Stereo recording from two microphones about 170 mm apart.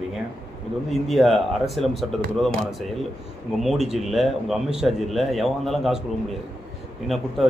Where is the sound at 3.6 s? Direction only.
Centre (ahead or behind).